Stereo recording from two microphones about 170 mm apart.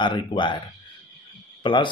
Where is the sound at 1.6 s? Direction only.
30° left (ahead or behind).